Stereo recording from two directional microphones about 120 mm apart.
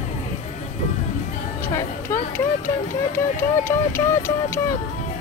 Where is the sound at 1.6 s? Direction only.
20° left (ahead or behind).